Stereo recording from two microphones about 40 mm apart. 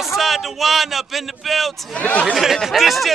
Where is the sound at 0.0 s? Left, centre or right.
Centre.